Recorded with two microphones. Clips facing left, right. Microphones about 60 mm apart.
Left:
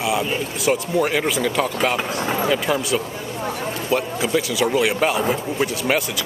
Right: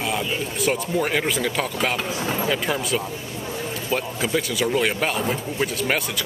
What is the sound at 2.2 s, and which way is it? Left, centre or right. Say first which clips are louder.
Speech: left 3 dB; left.